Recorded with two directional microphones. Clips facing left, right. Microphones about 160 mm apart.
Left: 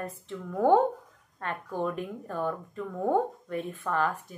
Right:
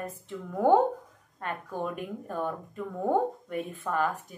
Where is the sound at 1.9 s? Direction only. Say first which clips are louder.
Even; 15° right (ahead or behind).